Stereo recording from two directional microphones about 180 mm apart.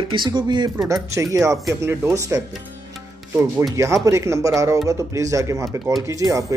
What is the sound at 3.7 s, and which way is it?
Speech, 15° right (ahead or behind).